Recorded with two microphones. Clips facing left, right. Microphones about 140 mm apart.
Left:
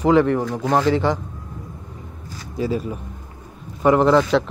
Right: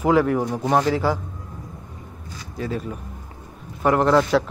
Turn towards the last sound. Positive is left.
turn(degrees=0)  # may be behind; listen again after turning